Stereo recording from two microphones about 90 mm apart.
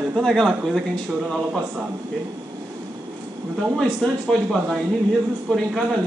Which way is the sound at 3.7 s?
Centre (ahead or behind).